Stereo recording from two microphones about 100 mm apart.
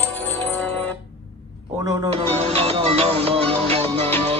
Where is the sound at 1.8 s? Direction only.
35° right (ahead or behind).